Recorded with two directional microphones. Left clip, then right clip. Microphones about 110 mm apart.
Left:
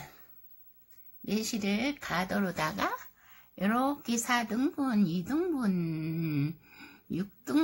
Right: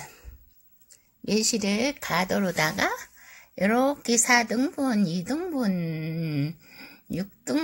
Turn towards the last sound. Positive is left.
turn(degrees=-30)  # may be behind; listen again after turning